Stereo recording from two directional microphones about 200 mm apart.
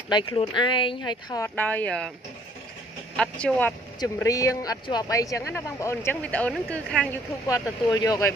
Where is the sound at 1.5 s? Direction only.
10° left (ahead or behind).